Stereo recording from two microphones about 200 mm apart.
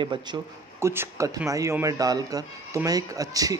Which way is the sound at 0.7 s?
15° right (ahead or behind).